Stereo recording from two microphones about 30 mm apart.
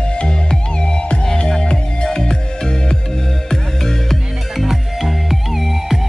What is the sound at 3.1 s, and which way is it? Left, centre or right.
Music, centre.